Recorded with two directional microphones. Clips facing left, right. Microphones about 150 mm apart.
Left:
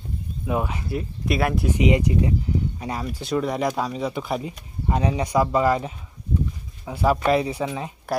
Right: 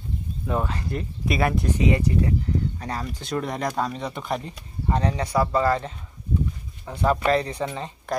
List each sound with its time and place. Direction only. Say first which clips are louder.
0.5 s speech: left 1 dB; 10° left (ahead or behind)
1.8 s speech: left 3 dB; 15° left (ahead or behind)